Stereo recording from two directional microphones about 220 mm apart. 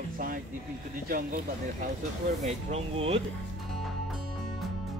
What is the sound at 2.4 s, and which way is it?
Speech, 30° right (ahead or behind).